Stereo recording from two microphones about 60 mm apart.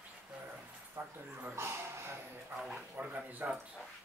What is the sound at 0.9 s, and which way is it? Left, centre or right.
Speech, right.